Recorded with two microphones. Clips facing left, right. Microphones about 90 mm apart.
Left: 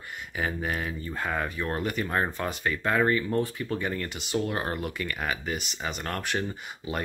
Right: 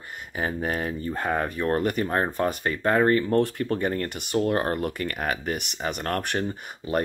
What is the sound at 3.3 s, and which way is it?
Speech, 55° right (ahead or behind).